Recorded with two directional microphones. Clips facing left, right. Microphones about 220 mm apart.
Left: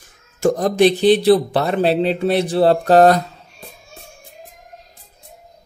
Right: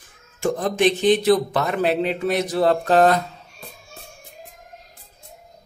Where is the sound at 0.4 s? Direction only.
40° left (ahead or behind).